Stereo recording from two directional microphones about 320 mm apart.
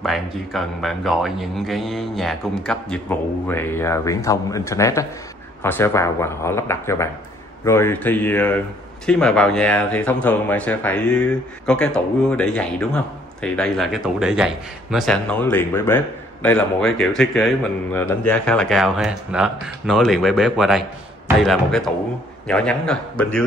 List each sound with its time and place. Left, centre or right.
0.0 s speech: centre